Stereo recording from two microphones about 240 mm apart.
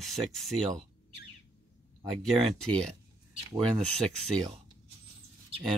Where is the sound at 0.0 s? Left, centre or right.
Centre.